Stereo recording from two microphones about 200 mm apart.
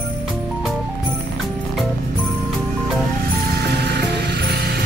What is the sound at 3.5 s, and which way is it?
Music, 55° right (ahead or behind).